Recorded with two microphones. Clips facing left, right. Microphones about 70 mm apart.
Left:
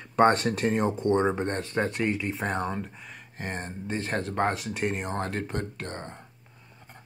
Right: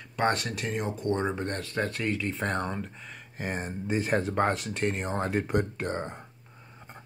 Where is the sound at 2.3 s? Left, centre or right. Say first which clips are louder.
Left 1 dB; centre.